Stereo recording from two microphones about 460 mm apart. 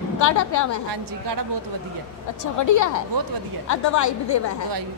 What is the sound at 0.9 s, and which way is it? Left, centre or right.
Speech, right.